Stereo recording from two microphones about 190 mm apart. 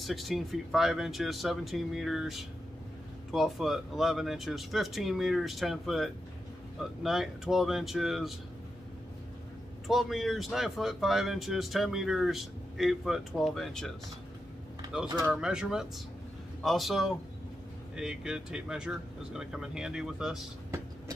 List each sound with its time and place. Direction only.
0.0 s speech: centre (ahead or behind)
9.8 s speech: centre (ahead or behind)
15.0 s speech: 20° right (ahead or behind)
15.3 s speech: 5° right (ahead or behind)